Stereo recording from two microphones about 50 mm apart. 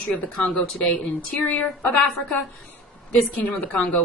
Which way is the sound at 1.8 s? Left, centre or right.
Left.